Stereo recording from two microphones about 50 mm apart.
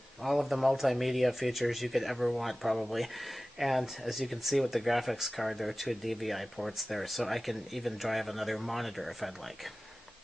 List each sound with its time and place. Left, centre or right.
0.2 s speech: centre